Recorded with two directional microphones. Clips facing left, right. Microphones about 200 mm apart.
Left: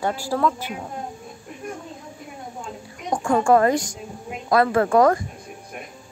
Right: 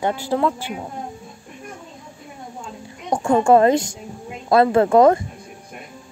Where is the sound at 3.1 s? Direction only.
25° right (ahead or behind).